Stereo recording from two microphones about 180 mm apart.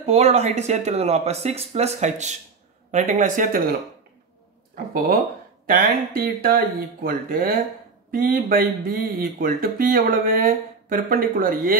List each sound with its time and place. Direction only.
0.0 s speech: 35° right (ahead or behind)
5.7 s speech: 55° right (ahead or behind)